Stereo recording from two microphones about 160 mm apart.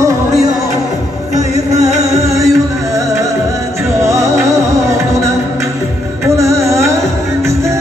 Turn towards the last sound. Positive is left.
turn(degrees=-15)  # may be behind; listen again after turning